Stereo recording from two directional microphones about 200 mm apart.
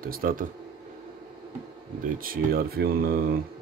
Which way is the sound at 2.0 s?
45° right (ahead or behind).